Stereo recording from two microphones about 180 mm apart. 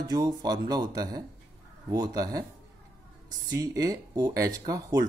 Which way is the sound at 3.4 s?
20° right (ahead or behind).